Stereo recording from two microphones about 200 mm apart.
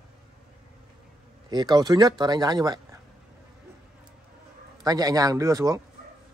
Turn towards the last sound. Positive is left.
turn(degrees=-15)  # may be behind; listen again after turning